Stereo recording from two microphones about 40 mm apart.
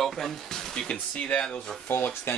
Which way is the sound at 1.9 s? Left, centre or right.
Left.